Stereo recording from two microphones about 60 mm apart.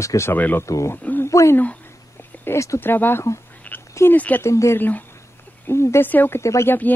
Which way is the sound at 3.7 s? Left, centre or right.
Left.